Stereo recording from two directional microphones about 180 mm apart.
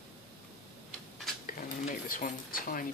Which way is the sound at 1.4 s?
50° left (ahead or behind).